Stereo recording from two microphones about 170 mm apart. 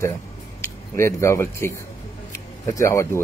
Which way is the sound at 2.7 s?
15° left (ahead or behind).